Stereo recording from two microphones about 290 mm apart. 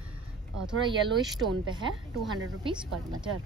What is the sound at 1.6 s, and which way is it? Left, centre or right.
Speech, centre.